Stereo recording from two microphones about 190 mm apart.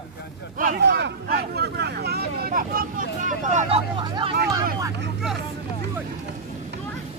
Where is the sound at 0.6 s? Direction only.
55° right (ahead or behind); by 4.3 s 25° right (ahead or behind).